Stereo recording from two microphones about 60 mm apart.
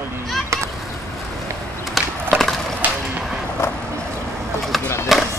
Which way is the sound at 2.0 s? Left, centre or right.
Centre.